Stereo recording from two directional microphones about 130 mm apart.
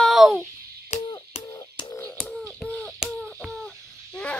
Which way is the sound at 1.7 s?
30° left (ahead or behind).